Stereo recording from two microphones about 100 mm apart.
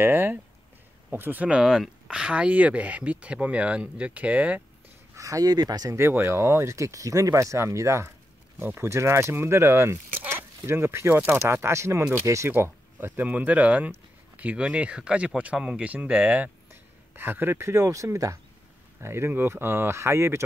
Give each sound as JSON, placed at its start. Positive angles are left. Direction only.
{"t": 0.0, "sound": "speech", "side_deg": -20}
{"t": 5.1, "sound": "speech", "side_deg": -35}
{"t": 5.9, "sound": "speech", "side_deg": -25}